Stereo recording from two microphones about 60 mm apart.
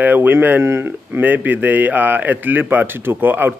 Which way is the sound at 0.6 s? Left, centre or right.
Right.